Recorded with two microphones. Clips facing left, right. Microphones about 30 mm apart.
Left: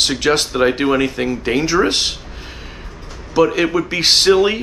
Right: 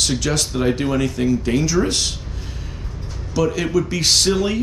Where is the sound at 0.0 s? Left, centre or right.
Left.